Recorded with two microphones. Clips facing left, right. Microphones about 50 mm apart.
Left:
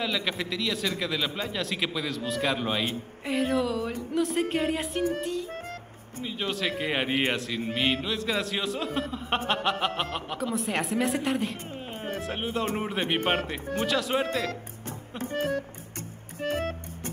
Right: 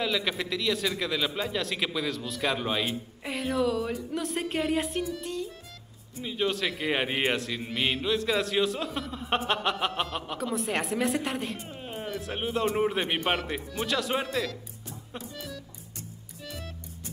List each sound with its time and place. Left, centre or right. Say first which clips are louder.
0.0 s speech: right 1 dB; centre
14.9 s music: left 7 dB; left